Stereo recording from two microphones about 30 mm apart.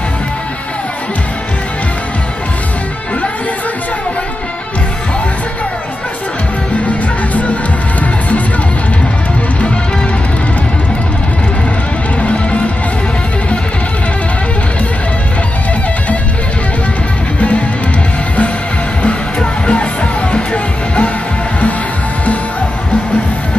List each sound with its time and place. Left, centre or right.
6.9 s music: left
12.2 s music: left
17.4 s music: left
19.6 s music: left